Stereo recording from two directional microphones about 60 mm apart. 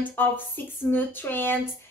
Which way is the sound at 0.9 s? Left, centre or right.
Left.